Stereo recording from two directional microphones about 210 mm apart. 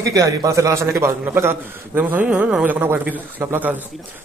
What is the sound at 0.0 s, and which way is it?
A man's voice, 15° right (ahead or behind).